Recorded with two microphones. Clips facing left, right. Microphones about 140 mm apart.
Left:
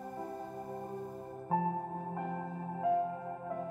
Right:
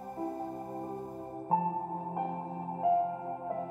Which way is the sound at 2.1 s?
25° right (ahead or behind).